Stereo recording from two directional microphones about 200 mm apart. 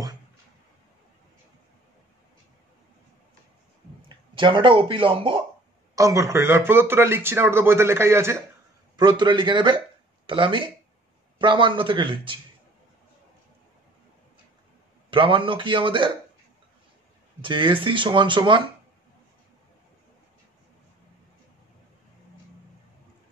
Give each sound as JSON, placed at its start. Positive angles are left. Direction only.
{"t": 4.4, "sound": "speech", "side_deg": -25}
{"t": 5.9, "sound": "speech", "side_deg": -15}
{"t": 15.0, "sound": "speech", "side_deg": -25}
{"t": 17.4, "sound": "speech", "side_deg": -25}